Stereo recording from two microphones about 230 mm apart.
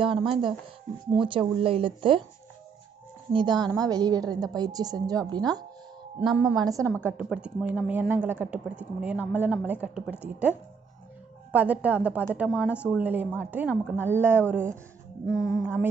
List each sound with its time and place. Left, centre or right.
0.0 s speech: right
3.3 s a woman's voice: centre